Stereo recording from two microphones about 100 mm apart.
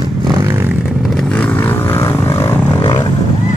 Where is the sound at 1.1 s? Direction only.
5° left (ahead or behind); by 2.5 s 25° left (ahead or behind).